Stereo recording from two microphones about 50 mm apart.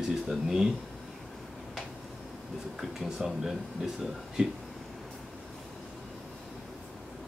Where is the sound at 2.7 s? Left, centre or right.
Centre.